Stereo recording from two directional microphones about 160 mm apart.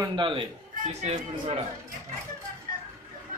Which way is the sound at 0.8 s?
40° right (ahead or behind).